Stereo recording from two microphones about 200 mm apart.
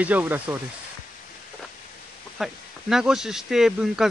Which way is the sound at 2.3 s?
Centre (ahead or behind).